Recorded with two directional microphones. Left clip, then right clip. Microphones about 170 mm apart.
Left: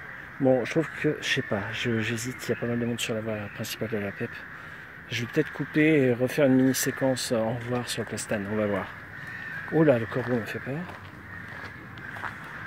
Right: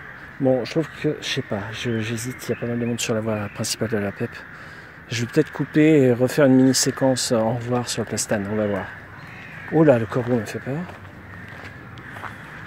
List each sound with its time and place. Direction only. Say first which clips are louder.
0.4 s speech: right 3 dB; 5° left (ahead or behind)
2.8 s speech: right 6 dB; 20° right (ahead or behind)
8.4 s speech: right 4 dB; 5° right (ahead or behind)
9.8 s speech: right 6 dB; 15° right (ahead or behind)